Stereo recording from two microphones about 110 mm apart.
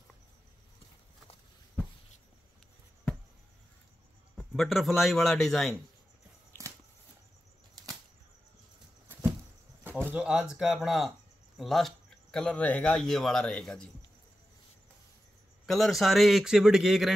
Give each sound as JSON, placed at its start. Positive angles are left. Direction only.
{"t": 4.4, "sound": "speech", "side_deg": 0}
{"t": 6.5, "sound": "a sound", "side_deg": 15}
{"t": 10.0, "sound": "speech", "side_deg": -10}
{"t": 15.6, "sound": "speech", "side_deg": 0}